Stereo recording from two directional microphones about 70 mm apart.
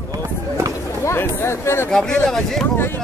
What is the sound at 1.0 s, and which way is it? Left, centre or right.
Speech, left.